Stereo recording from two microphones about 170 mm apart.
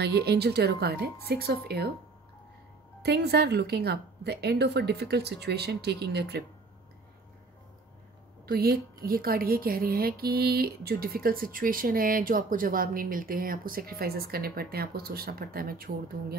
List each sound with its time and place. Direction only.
0.0 s speech: 70° right (ahead or behind)
3.0 s speech: 70° right (ahead or behind)
8.5 s a woman's voice: 60° right (ahead or behind)